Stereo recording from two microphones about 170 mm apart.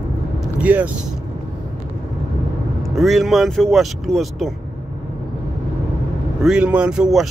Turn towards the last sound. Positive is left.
turn(degrees=-5)  # may be behind; listen again after turning